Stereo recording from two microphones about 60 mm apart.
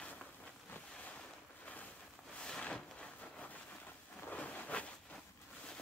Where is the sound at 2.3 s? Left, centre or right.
Centre.